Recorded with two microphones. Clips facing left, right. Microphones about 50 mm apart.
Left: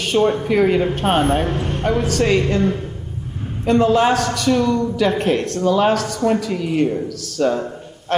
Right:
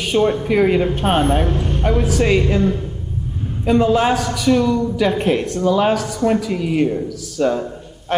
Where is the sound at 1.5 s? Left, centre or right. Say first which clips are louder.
Right 1 dB; centre.